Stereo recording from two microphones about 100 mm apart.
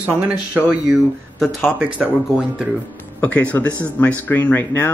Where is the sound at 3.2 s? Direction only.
15° left (ahead or behind).